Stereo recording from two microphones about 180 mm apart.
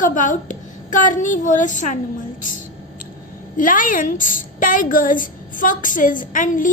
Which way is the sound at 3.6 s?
50° left (ahead or behind).